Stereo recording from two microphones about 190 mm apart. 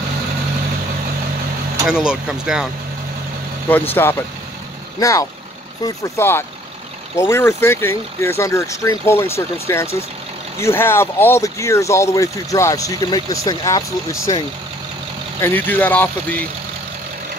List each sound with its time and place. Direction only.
1.9 s speech: 5° right (ahead or behind)
3.6 s speech: 10° left (ahead or behind)
15.4 s speech: 10° left (ahead or behind)